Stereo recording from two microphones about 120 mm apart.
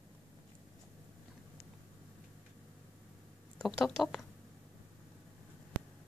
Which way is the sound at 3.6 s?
5° left (ahead or behind).